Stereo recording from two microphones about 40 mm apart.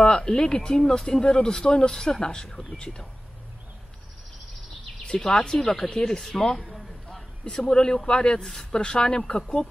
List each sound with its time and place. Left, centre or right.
0.0 s speech: left
5.0 s speech: left
6.6 s a sound: centre
7.5 s speech: centre